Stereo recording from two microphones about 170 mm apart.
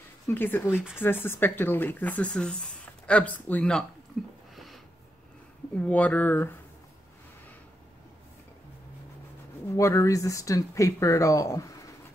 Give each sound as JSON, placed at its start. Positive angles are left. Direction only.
{"t": 0.3, "sound": "speech", "side_deg": 10}
{"t": 4.2, "sound": "a sound", "side_deg": 0}
{"t": 5.8, "sound": "speech", "side_deg": 10}
{"t": 9.8, "sound": "speech", "side_deg": 20}